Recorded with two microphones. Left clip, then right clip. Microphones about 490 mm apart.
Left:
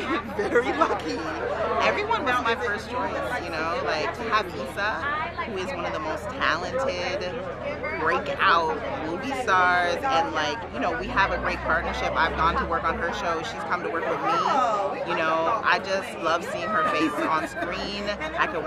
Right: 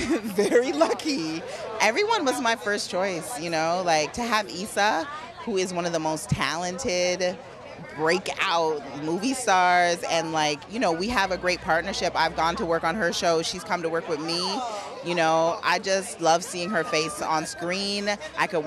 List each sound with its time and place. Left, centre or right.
0.4 s speech: right
3.5 s speech: right
5.6 s speech: right
8.1 s speech: right